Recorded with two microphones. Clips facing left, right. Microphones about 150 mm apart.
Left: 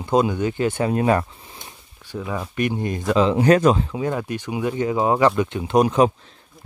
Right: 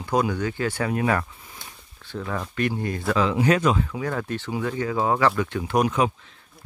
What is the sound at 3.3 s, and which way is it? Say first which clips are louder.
Speech: left 6 dB; 40° left (ahead or behind).